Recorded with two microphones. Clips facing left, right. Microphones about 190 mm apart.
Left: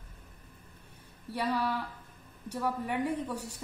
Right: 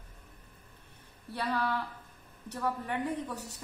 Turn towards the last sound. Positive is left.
turn(degrees=10)  # may be behind; listen again after turning